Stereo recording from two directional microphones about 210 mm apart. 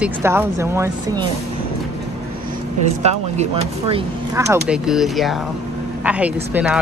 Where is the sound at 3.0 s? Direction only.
30° right (ahead or behind).